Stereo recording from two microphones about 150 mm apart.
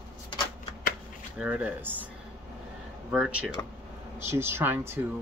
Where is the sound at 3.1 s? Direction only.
10° right (ahead or behind).